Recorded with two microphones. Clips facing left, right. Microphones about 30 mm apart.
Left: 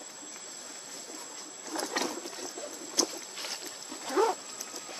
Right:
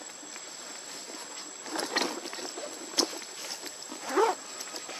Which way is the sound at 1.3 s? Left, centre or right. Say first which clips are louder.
Right 1 dB; right.